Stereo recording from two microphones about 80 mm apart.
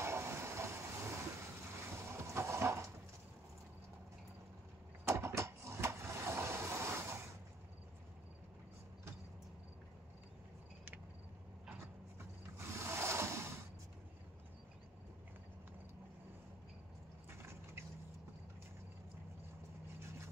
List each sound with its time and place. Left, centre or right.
0.0 s train: right
5.0 s vehicle: right
12.5 s rub: right